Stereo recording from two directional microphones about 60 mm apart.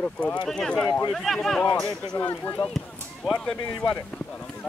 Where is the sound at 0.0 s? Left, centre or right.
Centre.